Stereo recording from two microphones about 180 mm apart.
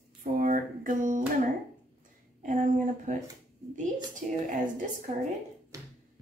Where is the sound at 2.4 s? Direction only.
45° right (ahead or behind).